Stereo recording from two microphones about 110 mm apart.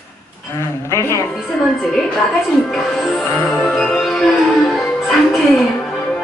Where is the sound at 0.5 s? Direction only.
25° left (ahead or behind).